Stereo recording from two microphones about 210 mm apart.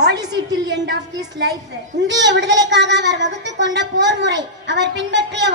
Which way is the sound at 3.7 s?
55° right (ahead or behind).